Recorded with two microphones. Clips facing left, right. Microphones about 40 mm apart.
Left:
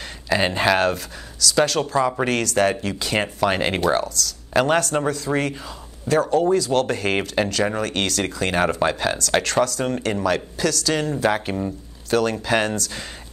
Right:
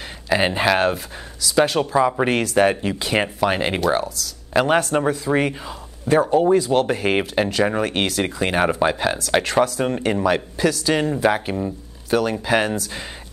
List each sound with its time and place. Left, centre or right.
0.3 s speech: centre